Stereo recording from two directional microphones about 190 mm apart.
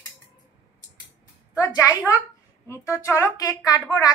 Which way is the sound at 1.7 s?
15° left (ahead or behind).